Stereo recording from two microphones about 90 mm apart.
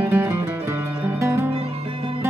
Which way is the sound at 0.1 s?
30° right (ahead or behind).